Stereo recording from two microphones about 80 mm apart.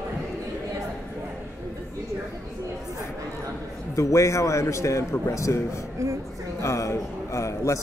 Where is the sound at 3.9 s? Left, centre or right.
Left.